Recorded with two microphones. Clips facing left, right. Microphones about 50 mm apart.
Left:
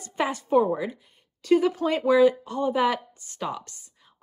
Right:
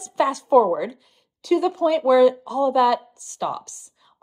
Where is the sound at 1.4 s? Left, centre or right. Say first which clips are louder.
Right 2 dB; left.